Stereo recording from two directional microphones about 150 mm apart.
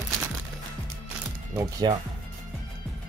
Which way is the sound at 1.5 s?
20° right (ahead or behind).